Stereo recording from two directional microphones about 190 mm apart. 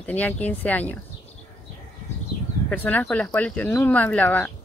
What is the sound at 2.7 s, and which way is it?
Speech, 10° left (ahead or behind).